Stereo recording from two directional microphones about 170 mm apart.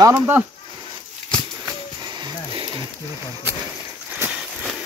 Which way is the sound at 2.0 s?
25° right (ahead or behind).